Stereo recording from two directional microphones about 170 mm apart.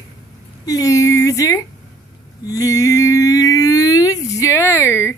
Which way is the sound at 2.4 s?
20° left (ahead or behind).